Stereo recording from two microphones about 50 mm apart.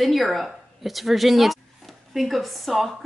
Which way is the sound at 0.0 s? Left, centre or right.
Centre.